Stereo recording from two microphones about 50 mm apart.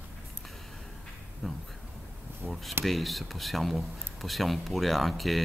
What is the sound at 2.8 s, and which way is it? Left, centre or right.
Speech, centre.